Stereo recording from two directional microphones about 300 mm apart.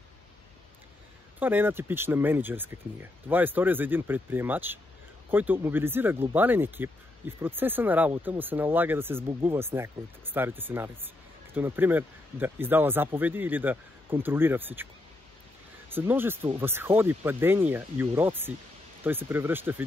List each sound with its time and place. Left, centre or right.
1.4 s speech: centre
15.9 s speech: centre